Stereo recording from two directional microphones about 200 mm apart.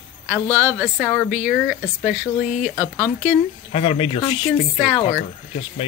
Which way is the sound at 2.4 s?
40° left (ahead or behind).